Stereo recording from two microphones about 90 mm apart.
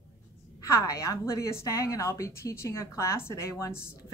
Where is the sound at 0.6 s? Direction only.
35° left (ahead or behind).